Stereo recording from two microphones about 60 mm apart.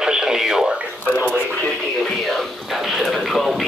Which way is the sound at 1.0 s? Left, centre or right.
Left.